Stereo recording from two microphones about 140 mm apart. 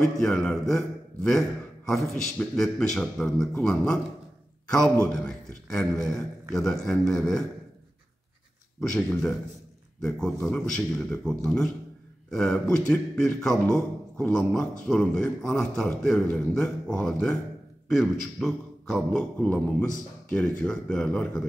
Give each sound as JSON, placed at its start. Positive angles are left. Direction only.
{"t": 0.2, "sound": "a man's voice", "side_deg": 5}
{"t": 8.9, "sound": "a man's voice", "side_deg": 5}